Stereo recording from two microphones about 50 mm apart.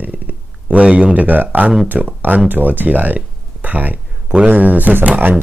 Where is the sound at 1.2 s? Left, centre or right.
Right.